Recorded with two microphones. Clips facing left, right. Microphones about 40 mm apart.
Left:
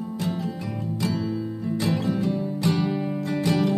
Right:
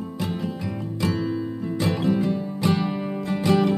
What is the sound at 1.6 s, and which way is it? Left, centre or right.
Music, centre.